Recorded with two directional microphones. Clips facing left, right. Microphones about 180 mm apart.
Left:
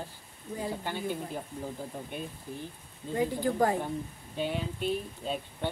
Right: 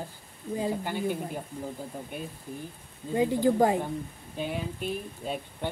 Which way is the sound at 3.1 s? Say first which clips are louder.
Right 5 dB; 20° right (ahead or behind).